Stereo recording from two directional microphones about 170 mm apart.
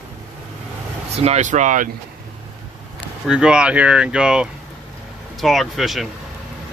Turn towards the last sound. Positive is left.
turn(degrees=0)  # may be behind; listen again after turning